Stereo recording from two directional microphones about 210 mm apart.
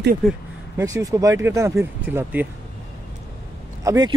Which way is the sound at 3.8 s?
20° right (ahead or behind).